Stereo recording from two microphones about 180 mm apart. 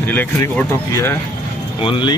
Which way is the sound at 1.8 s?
30° left (ahead or behind).